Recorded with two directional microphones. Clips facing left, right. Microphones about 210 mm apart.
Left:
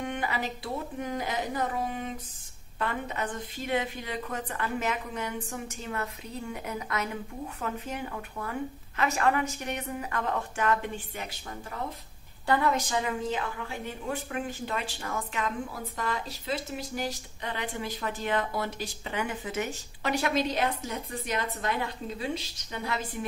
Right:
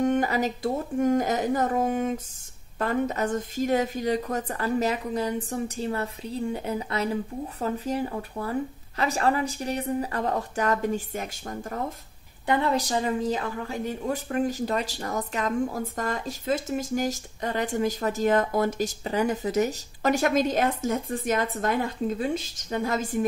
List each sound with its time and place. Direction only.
0.0 s a woman's voice: 40° right (ahead or behind)
12.4 s a woman's voice: 25° right (ahead or behind); by 23.2 s 45° right (ahead or behind)